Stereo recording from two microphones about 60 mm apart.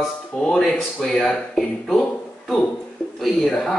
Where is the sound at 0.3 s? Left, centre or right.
Centre.